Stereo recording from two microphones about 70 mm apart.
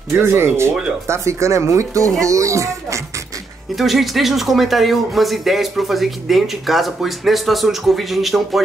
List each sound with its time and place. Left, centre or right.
0.1 s speech: right
3.7 s speech: centre